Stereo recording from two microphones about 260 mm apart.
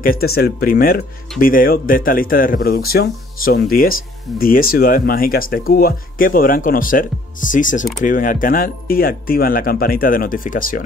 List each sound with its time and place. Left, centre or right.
0.0 s speech: left